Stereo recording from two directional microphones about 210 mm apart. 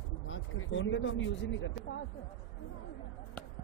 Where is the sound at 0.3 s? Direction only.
65° left (ahead or behind).